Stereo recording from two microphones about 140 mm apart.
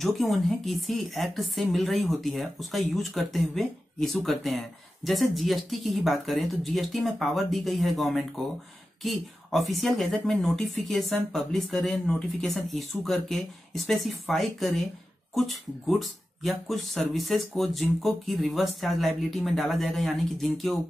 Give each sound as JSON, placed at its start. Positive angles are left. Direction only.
{"t": 0.0, "sound": "a woman's voice", "side_deg": 0}